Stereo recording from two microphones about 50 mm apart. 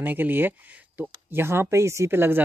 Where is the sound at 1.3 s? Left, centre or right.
Right.